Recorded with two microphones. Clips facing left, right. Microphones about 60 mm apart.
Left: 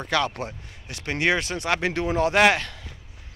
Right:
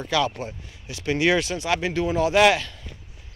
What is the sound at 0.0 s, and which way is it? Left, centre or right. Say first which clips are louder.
Speech: right 1 dB; left.